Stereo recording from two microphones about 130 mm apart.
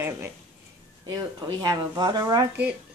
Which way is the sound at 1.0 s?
30° right (ahead or behind).